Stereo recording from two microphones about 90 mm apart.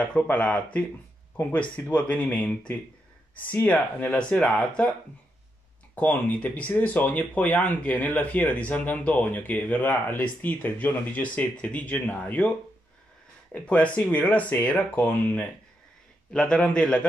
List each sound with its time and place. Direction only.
0.0 s speech: 15° left (ahead or behind)
1.9 s speech: 15° left (ahead or behind)
5.9 s speech: 20° left (ahead or behind)
13.5 s speech: 15° left (ahead or behind)
16.3 s speech: 10° left (ahead or behind)